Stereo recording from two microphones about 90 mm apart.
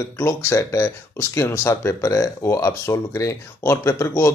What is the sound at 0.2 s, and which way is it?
Speech, 30° left (ahead or behind).